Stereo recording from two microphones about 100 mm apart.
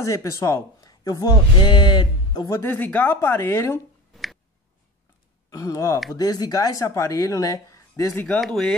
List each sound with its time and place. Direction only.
0.0 s speech: 30° left (ahead or behind)
2.5 s a woman's voice: 20° left (ahead or behind)
4.1 s a sound: centre (ahead or behind)
5.5 s speech: 35° left (ahead or behind)
7.9 s speech: 15° left (ahead or behind)
8.4 s speech: 5° left (ahead or behind)